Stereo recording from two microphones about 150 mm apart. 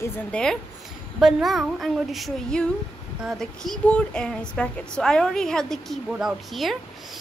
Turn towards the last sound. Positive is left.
turn(degrees=0)  # may be behind; listen again after turning